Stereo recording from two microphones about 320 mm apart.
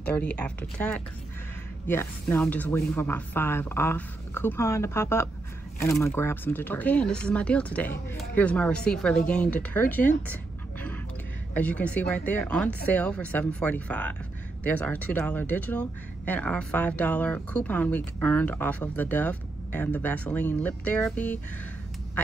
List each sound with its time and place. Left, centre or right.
0.0 s a woman's voice: centre
11.5 s speech: centre